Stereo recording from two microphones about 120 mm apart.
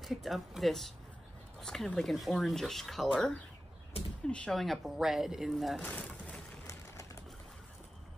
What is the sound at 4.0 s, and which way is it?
Speech, 55° left (ahead or behind).